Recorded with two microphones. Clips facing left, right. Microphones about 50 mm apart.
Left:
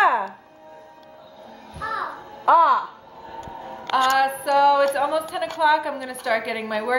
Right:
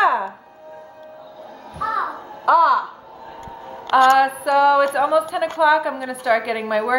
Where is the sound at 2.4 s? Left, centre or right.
Centre.